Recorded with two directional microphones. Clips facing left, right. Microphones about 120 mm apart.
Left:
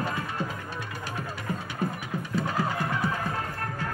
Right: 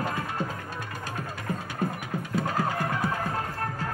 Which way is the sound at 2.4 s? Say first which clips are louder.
Even; 45° right (ahead or behind).